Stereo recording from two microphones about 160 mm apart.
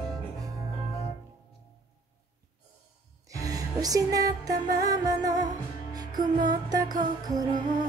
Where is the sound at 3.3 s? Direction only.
20° right (ahead or behind).